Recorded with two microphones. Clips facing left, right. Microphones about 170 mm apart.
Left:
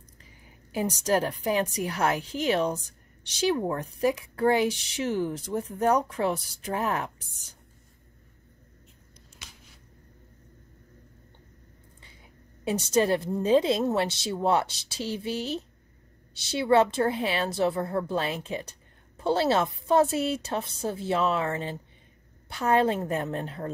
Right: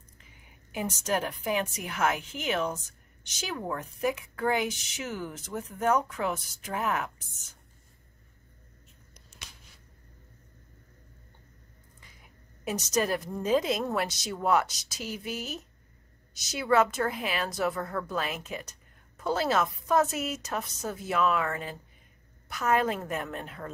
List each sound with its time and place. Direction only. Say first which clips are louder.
0.2 s a woman's voice: left 4 dB; 35° left (ahead or behind)
12.6 s a woman's voice: left 5 dB; 30° left (ahead or behind)